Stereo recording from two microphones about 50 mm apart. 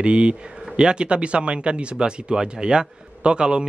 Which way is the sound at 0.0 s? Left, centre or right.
Right.